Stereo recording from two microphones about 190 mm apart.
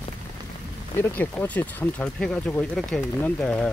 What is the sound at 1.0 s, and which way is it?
Speech, 10° left (ahead or behind).